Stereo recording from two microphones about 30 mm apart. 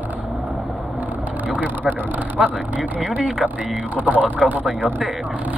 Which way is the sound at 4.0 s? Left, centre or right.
Right.